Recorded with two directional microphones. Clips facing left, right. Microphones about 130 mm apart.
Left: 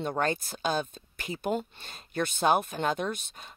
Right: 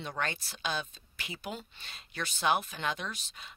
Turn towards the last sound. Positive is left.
turn(degrees=45)  # may be behind; listen again after turning